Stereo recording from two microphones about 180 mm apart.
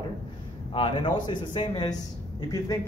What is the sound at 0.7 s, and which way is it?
A man's voice, 30° left (ahead or behind).